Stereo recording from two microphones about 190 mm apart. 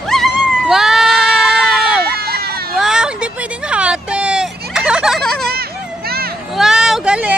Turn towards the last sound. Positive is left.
turn(degrees=-5)  # may be behind; listen again after turning